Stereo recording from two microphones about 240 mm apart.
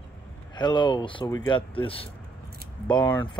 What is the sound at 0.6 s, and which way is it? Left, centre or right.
Speech, centre.